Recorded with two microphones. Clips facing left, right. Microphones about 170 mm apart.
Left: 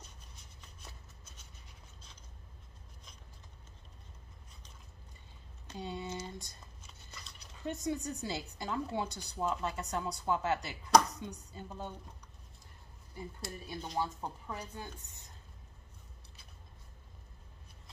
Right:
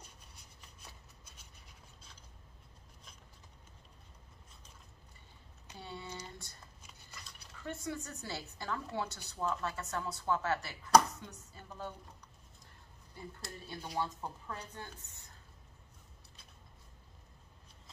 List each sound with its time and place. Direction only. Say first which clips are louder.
5.8 s a sound: left 6 dB; 15° left (ahead or behind)
7.5 s speech: left 5 dB; 20° left (ahead or behind)
13.1 s speech: left 4 dB; 15° left (ahead or behind)